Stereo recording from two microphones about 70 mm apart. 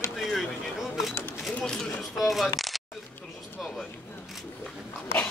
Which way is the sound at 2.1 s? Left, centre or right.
Centre.